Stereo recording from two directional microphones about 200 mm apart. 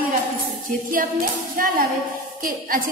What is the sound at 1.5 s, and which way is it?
A woman's voice, 45° right (ahead or behind).